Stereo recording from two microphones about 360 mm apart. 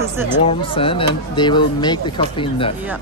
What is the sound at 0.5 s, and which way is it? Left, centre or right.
Speech, centre.